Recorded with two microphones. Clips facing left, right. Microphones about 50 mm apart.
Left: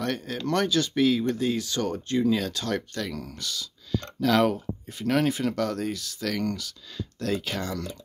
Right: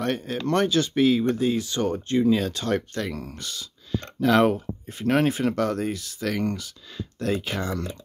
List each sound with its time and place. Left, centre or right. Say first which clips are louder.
0.0 s speech: right 3 dB; right